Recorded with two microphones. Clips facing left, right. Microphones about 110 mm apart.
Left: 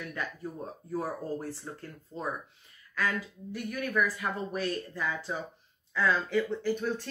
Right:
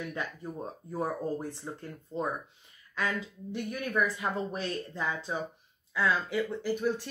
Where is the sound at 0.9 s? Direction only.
20° right (ahead or behind).